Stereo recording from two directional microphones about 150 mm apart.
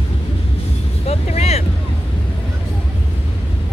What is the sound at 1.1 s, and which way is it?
Speech, 45° left (ahead or behind).